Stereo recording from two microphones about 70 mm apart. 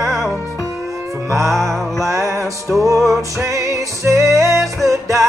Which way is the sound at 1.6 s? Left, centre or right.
Right.